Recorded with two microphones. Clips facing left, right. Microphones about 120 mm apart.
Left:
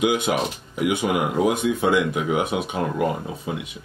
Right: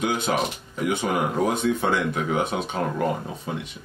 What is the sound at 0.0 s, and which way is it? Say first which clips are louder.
Speech: left 3 dB; 15° left (ahead or behind).